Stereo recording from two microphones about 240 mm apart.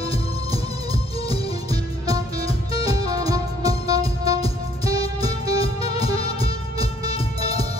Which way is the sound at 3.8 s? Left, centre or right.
Left.